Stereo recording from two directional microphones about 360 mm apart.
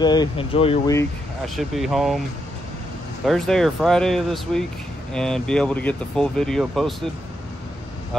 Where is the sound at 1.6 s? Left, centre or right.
Centre.